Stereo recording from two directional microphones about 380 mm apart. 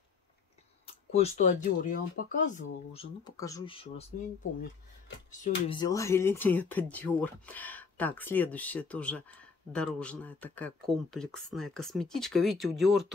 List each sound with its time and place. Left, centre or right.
0.8 s speech: centre
5.3 s speech: centre